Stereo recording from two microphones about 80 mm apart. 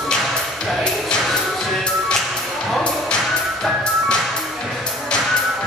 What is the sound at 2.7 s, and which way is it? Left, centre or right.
Music, centre.